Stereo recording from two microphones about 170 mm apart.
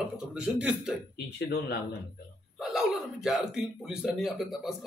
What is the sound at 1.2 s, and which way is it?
Speech, 75° left (ahead or behind).